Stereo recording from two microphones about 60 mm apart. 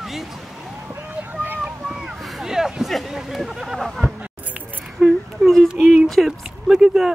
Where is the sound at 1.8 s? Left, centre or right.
Centre.